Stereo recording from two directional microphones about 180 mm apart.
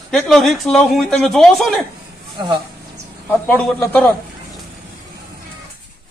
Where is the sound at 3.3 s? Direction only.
10° left (ahead or behind).